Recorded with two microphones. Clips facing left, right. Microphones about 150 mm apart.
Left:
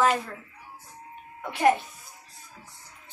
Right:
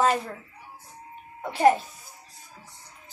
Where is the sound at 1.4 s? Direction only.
30° right (ahead or behind).